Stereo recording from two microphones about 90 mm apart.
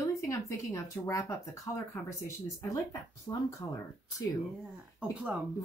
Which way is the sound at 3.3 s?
35° left (ahead or behind).